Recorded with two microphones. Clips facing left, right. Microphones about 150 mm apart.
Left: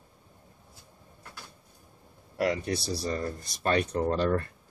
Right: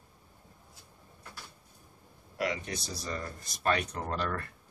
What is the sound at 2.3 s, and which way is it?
Speech, 40° left (ahead or behind).